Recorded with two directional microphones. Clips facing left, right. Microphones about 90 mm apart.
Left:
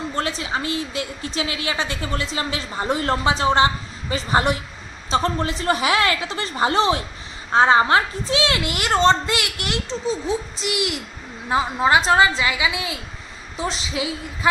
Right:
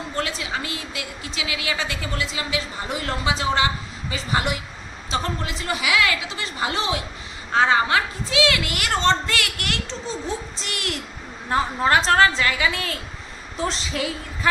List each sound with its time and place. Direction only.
0.1 s a woman's voice: 30° left (ahead or behind); by 14.5 s 10° left (ahead or behind)